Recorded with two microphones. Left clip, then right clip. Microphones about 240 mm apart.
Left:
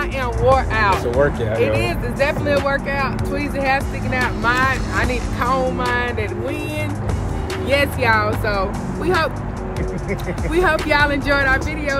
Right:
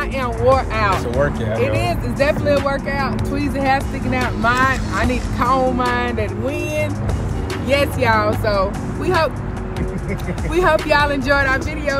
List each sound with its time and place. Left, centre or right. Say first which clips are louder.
0.2 s speech: even; centre
7.7 s speech: even; centre
10.5 s speech: right 2 dB; centre